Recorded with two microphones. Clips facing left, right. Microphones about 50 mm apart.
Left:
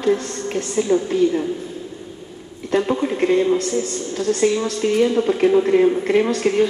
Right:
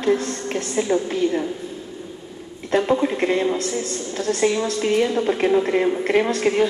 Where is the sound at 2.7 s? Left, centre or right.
Centre.